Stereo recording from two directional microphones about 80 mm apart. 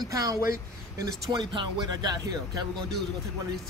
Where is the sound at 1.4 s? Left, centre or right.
Right.